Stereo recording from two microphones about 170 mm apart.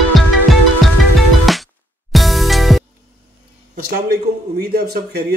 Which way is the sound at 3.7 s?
65° right (ahead or behind).